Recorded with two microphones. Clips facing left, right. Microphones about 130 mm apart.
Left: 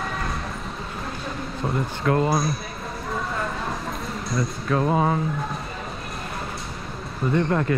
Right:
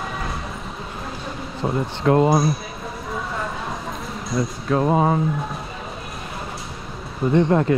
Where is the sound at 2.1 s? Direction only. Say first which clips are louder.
Right 5 dB; 25° right (ahead or behind).